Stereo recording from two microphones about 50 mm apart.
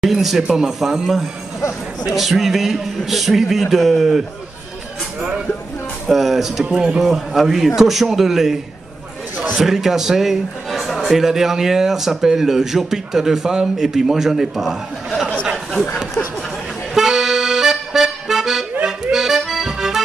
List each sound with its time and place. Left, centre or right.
0.0 s a man's voice: centre
6.0 s a man's voice: centre
6.6 s a man's voice: centre
7.0 s a man's voice: centre
9.6 s a man's voice: centre
15.5 s a sound: centre
16.9 s accordion: centre